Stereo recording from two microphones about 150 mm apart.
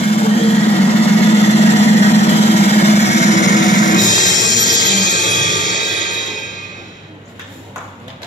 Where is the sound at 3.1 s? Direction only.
50° left (ahead or behind).